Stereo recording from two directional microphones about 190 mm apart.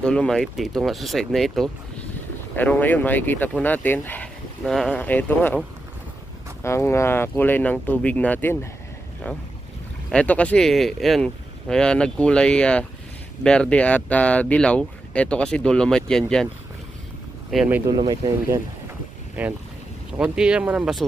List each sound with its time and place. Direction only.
0.0 s speech: 5° left (ahead or behind)
10.1 s speech: 5° left (ahead or behind)
17.5 s speech: 5° right (ahead or behind)
17.8 s speech: 20° right (ahead or behind)
19.4 s speech: 10° right (ahead or behind)